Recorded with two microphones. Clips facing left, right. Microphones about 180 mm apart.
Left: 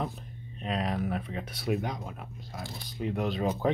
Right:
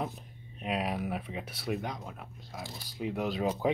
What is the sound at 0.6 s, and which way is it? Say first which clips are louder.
Speech: left 1 dB; 10° right (ahead or behind).